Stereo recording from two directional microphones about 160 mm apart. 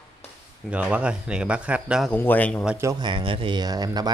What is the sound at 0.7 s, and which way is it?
Speech, 10° right (ahead or behind).